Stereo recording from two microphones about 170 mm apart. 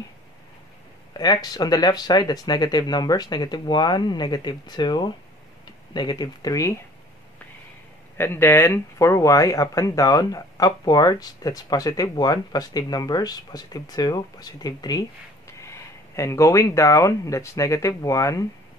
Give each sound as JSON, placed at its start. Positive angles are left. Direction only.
{"t": 1.1, "sound": "speech", "side_deg": 25}
{"t": 8.2, "sound": "speech", "side_deg": 15}